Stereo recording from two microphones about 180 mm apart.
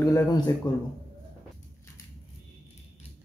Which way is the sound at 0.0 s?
20° left (ahead or behind).